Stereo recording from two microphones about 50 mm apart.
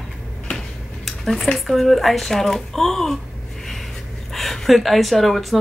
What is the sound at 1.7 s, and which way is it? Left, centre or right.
Speech, centre.